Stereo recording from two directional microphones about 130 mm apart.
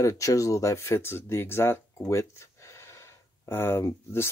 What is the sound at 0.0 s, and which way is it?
Speech, 25° left (ahead or behind).